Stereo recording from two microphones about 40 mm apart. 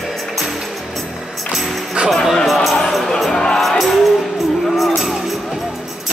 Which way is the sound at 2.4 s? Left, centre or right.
Centre.